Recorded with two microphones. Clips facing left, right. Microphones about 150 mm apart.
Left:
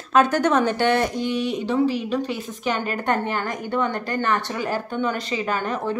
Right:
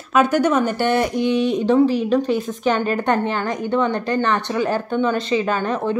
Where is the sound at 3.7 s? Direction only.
20° right (ahead or behind).